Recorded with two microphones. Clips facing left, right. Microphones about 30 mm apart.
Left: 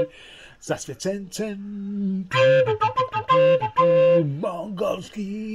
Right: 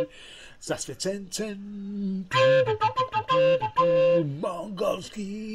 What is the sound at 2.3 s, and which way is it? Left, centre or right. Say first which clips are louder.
Flute: left 3 dB; left.